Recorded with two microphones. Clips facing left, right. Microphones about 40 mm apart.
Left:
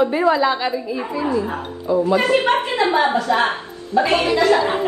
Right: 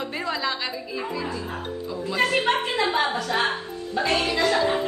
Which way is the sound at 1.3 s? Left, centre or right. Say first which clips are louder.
Left 9 dB; left.